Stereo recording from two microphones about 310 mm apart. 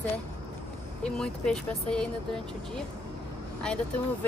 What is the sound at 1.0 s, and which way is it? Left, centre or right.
Speech, centre.